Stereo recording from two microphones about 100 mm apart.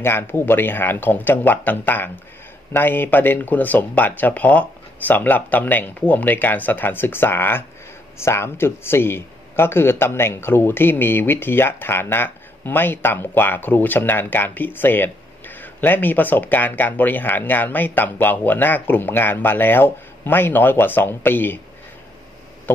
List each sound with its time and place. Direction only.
0.0 s a man's voice: 25° left (ahead or behind)